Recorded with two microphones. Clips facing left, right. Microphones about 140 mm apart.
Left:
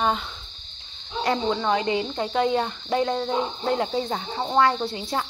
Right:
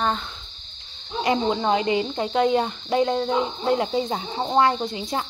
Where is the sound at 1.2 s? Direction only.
15° right (ahead or behind).